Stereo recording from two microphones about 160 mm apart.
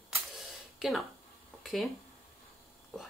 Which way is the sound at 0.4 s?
Centre (ahead or behind).